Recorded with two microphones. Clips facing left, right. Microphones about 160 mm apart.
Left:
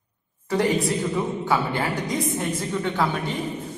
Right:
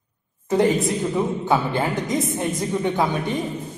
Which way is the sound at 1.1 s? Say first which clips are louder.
Right 3 dB; 20° right (ahead or behind).